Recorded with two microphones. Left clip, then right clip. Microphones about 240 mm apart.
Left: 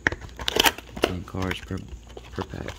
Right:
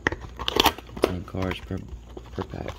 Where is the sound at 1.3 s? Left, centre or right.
Centre.